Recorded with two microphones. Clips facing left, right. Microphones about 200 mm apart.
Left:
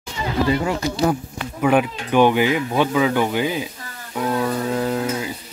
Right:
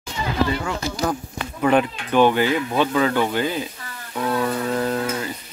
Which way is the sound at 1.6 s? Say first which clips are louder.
Left 1 dB; 10° left (ahead or behind).